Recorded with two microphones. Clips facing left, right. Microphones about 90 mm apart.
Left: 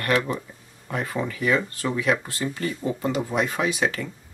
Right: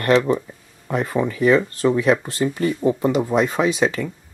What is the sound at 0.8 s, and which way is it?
Speech, 25° right (ahead or behind).